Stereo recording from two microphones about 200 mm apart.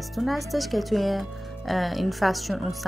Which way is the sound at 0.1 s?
Centre (ahead or behind).